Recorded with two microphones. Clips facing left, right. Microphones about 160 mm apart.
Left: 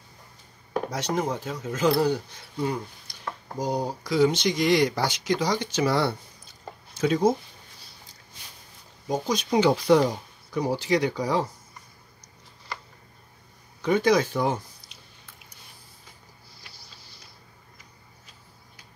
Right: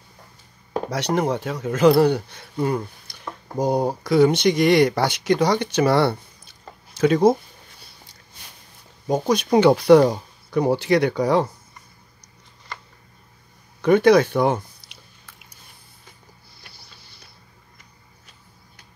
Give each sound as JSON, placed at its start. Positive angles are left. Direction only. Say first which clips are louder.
{"t": 0.8, "sound": "speech", "louder": "right 6 dB", "side_deg": -70}
{"t": 9.0, "sound": "speech", "louder": "right 6 dB", "side_deg": -60}
{"t": 13.7, "sound": "speech", "louder": "right 7 dB", "side_deg": -60}
{"t": 16.6, "sound": "a sound", "louder": "right 2 dB", "side_deg": -60}